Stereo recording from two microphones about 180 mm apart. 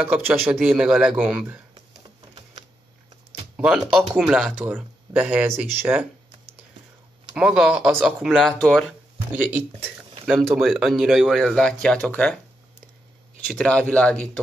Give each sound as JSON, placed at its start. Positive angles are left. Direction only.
{"t": 0.0, "sound": "speech", "side_deg": -10}
{"t": 3.5, "sound": "speech", "side_deg": -5}
{"t": 7.3, "sound": "speech", "side_deg": -5}
{"t": 9.3, "sound": "speech", "side_deg": -10}
{"t": 13.5, "sound": "speech", "side_deg": 5}